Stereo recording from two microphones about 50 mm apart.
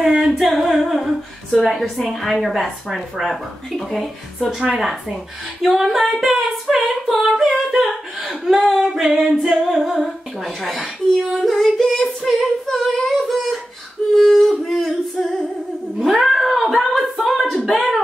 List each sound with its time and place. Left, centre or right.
0.0 s speech: centre
7.8 s singing: centre
9.7 s speech: centre
17.3 s singing: centre
17.7 s speech: centre